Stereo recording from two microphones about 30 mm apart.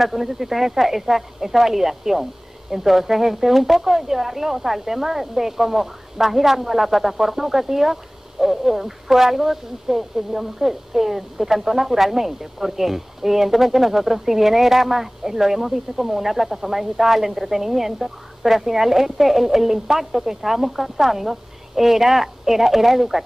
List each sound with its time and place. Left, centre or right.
0.0 s speech: centre